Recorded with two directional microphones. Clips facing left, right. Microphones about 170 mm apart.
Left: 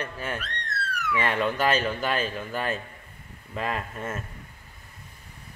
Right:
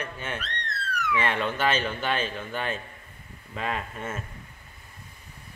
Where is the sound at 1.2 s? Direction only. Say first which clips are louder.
Left 3 dB; centre (ahead or behind).